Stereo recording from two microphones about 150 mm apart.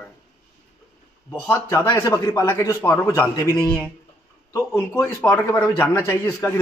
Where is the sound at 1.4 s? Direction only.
15° left (ahead or behind).